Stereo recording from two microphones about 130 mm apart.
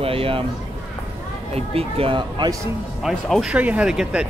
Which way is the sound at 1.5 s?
50° right (ahead or behind).